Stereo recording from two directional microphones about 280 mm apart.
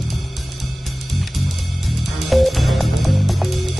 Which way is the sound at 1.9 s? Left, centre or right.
Centre.